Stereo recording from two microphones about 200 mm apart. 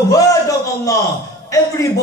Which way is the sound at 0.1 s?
15° left (ahead or behind).